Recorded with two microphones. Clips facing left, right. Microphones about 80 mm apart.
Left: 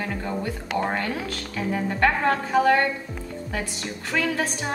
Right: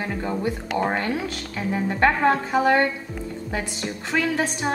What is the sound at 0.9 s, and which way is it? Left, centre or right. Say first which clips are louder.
A woman's voice: right 2 dB; right.